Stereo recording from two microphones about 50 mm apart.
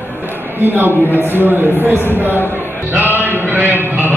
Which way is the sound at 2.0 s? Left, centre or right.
Right.